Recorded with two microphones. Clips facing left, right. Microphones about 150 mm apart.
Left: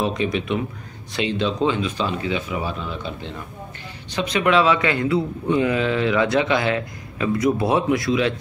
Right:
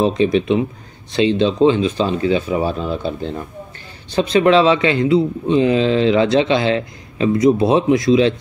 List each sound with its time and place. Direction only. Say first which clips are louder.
0.0 s a man's voice: right 7 dB; 30° right (ahead or behind)